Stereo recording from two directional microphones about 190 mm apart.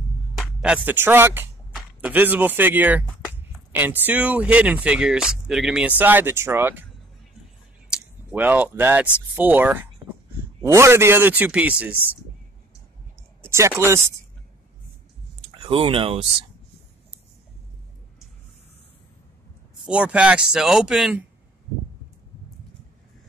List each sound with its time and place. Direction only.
0.4 s speech: 5° right (ahead or behind)
8.3 s speech: 10° right (ahead or behind)
13.4 s speech: 15° right (ahead or behind)
15.5 s speech: 25° right (ahead or behind)
19.9 s speech: 5° right (ahead or behind)